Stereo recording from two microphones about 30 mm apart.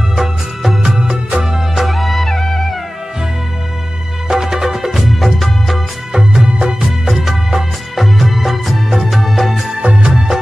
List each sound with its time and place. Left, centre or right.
0.1 s music: centre
0.8 s music of bollywood: right
1.4 s music: centre
1.9 s music: centre
4.3 s music: centre
4.9 s music of bollywood: centre
6.1 s music of bollywood: right; by 9.7 s centre
9.8 s music: right